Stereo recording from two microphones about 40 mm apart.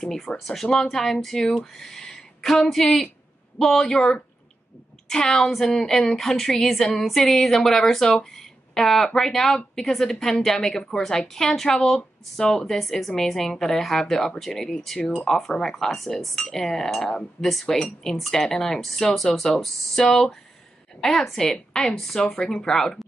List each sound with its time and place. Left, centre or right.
0.0 s a woman's voice: centre
22.2 s speech: left